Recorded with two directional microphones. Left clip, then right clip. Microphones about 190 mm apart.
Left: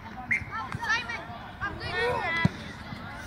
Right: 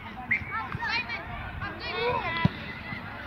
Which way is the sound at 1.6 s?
40° right (ahead or behind).